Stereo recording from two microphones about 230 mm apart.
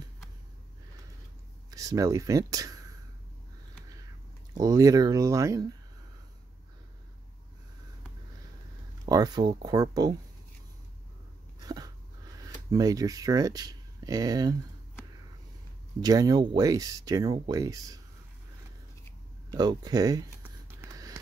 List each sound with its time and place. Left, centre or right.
1.7 s speech: centre
4.6 s speech: centre
9.0 s speech: centre
11.6 s dog: centre
12.7 s speech: centre
16.0 s speech: centre
19.5 s speech: centre
20.8 s a sound: centre